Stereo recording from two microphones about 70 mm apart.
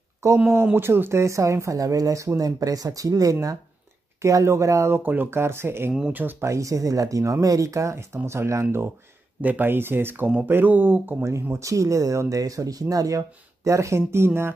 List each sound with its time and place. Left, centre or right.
0.2 s speech: right
0.7 s speech: right
1.2 s speech: right
4.2 s speech: right
4.9 s speech: right
6.4 s speech: right
9.4 s speech: right
11.5 s speech: right
13.7 s speech: right